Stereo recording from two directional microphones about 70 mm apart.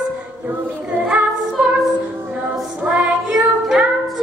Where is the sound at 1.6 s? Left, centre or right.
Centre.